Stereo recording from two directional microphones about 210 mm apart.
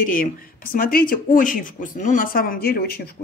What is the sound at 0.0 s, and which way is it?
A woman's voice, 40° left (ahead or behind).